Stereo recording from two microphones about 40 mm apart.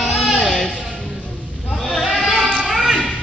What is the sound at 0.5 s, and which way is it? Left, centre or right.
Music, centre.